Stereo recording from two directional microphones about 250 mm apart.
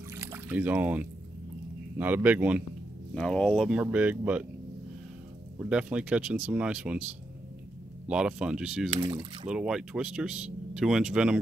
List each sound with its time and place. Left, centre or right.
0.1 s boat: centre
2.0 s a man's voice: centre
5.6 s speech: centre
8.1 s speech: centre
8.9 s a man's voice: centre
9.5 s speech: centre